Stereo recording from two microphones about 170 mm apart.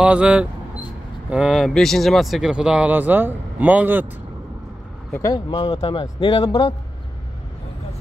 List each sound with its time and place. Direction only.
0.0 s speech: 5° right (ahead or behind)
5.1 s speech: 20° left (ahead or behind)